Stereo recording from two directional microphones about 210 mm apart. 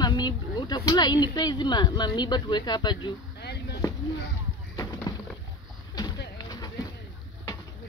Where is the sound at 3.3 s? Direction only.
50° left (ahead or behind).